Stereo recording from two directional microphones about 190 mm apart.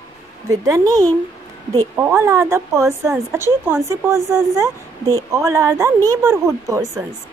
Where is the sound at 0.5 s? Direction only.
15° right (ahead or behind).